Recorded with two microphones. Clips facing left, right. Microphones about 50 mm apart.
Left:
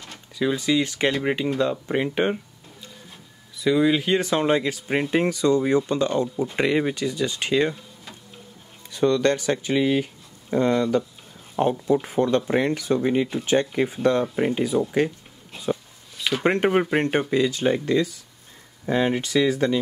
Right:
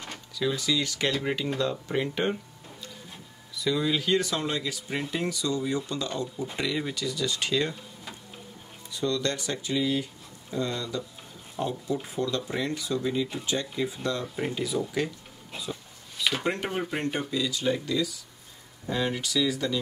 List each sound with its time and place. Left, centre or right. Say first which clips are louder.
0.4 s speech: left 6 dB; left
3.5 s speech: left 7 dB; left
8.9 s speech: left 9 dB; left
16.4 s speech: left 9 dB; left